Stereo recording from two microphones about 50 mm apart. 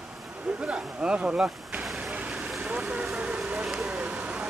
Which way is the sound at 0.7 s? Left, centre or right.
Right.